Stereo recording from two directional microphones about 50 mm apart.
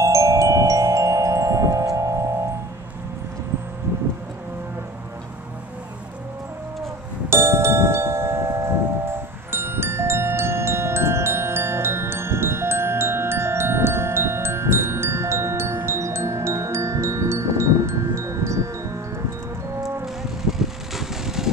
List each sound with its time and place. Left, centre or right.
0.0 s chime: right
7.2 s bell: right
20.5 s vehicle: centre